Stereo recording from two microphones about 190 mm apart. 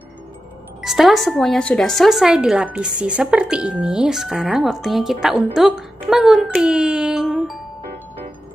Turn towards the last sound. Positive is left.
turn(degrees=0)  # may be behind; listen again after turning